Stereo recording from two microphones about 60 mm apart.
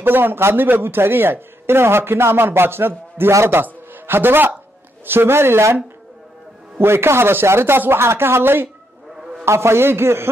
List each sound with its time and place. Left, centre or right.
0.0 s a man's voice: right
6.8 s a man's voice: right
9.1 s a sound: centre
9.4 s a man's voice: right